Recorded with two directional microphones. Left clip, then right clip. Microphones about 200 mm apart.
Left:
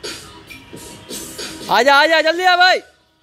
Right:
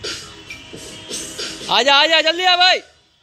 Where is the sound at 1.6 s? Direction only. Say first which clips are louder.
Left 2 dB; 25° left (ahead or behind).